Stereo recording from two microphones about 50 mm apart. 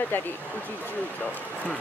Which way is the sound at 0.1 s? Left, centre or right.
Left.